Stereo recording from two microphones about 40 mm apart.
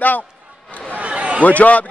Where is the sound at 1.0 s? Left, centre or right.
Right.